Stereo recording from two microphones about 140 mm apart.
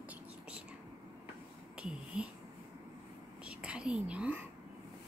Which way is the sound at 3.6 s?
5° right (ahead or behind).